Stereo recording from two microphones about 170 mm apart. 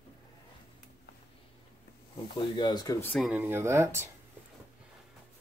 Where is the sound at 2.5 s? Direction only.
25° left (ahead or behind).